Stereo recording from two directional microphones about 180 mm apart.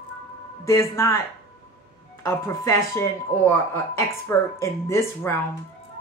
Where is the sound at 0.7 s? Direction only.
15° left (ahead or behind).